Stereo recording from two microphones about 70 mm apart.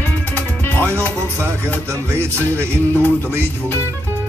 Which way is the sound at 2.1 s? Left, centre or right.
Right.